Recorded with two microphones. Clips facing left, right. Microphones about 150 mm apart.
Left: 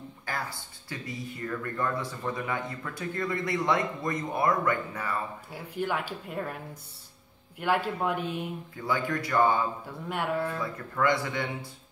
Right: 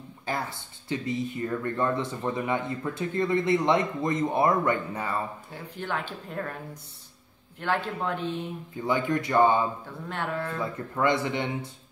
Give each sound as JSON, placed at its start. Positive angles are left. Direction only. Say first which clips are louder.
{"t": 0.2, "sound": "speech", "louder": "right 4 dB", "side_deg": -20}
{"t": 5.5, "sound": "a woman's voice", "louder": "left 2 dB", "side_deg": 10}
{"t": 8.7, "sound": "speech", "louder": "right 4 dB", "side_deg": -20}
{"t": 9.8, "sound": "a woman's voice", "louder": "left 1 dB", "side_deg": 10}
{"t": 10.6, "sound": "speech", "louder": "right 2 dB", "side_deg": -20}